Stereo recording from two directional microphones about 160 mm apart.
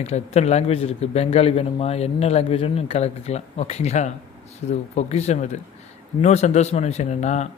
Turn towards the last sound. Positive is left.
turn(degrees=45)  # may be behind; listen again after turning